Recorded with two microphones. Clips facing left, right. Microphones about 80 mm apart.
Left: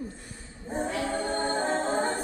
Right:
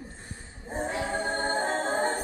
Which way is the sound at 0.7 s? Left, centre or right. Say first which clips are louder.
Left 1 dB; right.